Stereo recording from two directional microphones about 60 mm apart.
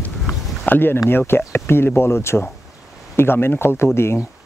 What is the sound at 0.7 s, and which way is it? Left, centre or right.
Speech, left.